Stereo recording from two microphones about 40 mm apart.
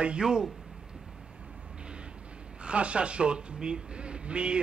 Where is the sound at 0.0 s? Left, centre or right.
Right.